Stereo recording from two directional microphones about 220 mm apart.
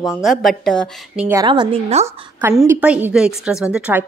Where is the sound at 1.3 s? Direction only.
15° right (ahead or behind).